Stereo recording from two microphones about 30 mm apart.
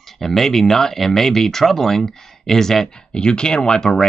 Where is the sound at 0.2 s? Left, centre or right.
Centre.